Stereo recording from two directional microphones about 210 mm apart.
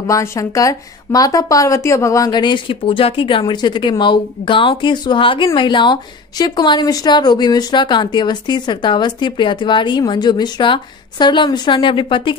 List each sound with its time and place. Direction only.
0.0 s a woman's voice: 15° left (ahead or behind)